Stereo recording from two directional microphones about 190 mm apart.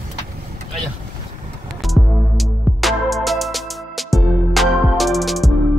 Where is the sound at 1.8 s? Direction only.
Centre (ahead or behind).